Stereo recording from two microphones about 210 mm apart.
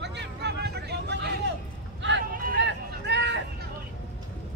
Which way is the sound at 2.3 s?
45° right (ahead or behind).